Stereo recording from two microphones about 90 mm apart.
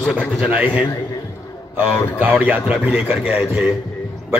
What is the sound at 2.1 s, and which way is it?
A man's voice, 20° right (ahead or behind).